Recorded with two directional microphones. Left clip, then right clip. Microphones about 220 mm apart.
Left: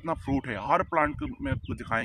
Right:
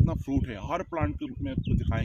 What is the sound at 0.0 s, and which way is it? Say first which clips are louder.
Speech: left 2 dB; 20° left (ahead or behind).